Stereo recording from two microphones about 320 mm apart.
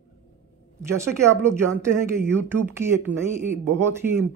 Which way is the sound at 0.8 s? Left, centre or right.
Centre.